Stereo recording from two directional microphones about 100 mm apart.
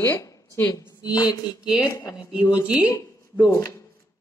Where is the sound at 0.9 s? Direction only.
40° left (ahead or behind).